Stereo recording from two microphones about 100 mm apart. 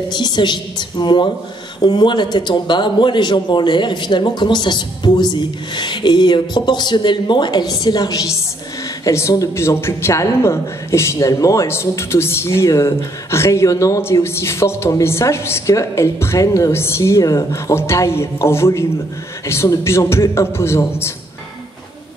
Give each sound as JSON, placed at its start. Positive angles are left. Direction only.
{"t": 0.1, "sound": "a man's voice", "side_deg": 50}
{"t": 9.0, "sound": "speech", "side_deg": 30}